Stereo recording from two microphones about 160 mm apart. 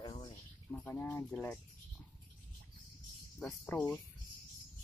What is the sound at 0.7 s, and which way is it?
Speech, 10° left (ahead or behind).